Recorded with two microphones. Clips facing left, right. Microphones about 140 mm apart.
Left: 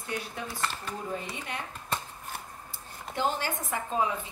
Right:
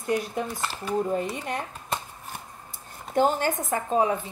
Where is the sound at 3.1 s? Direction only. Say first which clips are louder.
Right 8 dB; 45° right (ahead or behind).